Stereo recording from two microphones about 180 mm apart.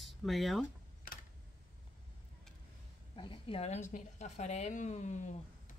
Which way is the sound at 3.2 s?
30° left (ahead or behind).